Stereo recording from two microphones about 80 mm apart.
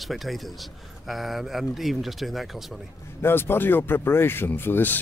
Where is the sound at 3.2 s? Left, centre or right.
Left.